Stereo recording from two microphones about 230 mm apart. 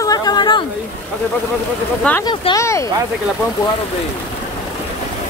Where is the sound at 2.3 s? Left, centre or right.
Centre.